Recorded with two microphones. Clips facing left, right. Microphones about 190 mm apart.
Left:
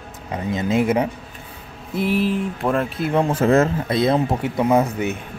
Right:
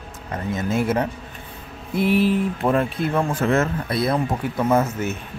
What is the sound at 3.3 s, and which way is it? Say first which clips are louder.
Speech: left 4 dB; 35° left (ahead or behind).